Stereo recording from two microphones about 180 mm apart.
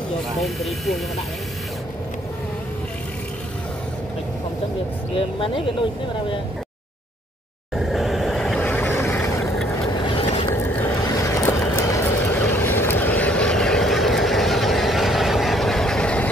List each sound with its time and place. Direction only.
0.3 s speech: centre (ahead or behind)
5.1 s speech: 30° left (ahead or behind)
7.7 s vehicle: centre (ahead or behind)
10.0 s vehicle: 35° left (ahead or behind)
10.5 s vehicle: 15° left (ahead or behind)